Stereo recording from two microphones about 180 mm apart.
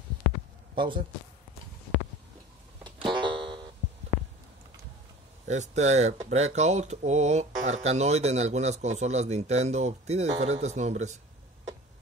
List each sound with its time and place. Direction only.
0.7 s a man's voice: 25° right (ahead or behind)
2.8 s music: 25° right (ahead or behind)
5.5 s speech: 40° right (ahead or behind)